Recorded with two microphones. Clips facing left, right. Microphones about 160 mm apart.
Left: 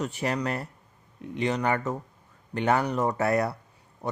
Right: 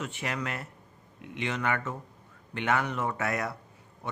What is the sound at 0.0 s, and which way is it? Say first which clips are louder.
A man's voice: left 6 dB; 35° left (ahead or behind).